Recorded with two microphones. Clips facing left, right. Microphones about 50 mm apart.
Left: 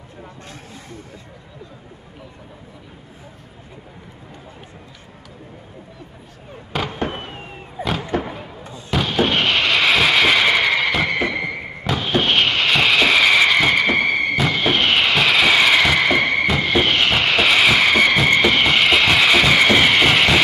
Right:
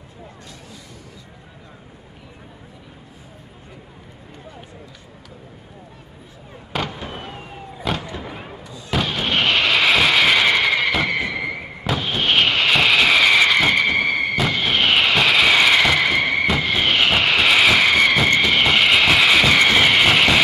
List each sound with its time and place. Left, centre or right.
7.0 s fireworks: left
8.9 s artillery fire: centre
11.2 s a sound: centre